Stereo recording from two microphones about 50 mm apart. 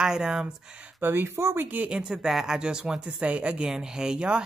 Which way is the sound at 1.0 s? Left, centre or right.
Right.